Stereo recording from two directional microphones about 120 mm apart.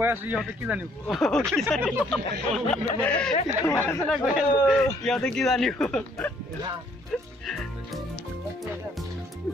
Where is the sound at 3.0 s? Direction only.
10° left (ahead or behind).